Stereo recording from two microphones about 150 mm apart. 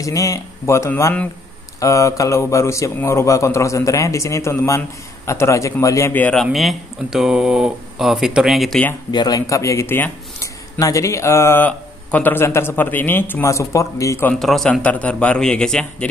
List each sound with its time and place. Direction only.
0.0 s speech: 20° left (ahead or behind)
6.4 s speech: centre (ahead or behind)
9.1 s speech: 25° left (ahead or behind)
14.3 s speech: centre (ahead or behind)